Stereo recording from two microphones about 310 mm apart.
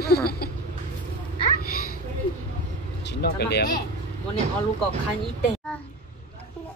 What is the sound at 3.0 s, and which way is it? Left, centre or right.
Speech, left.